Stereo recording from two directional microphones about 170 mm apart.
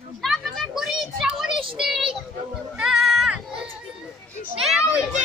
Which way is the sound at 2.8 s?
5° right (ahead or behind).